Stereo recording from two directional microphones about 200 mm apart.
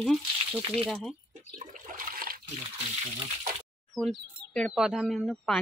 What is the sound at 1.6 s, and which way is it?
Water, 40° right (ahead or behind).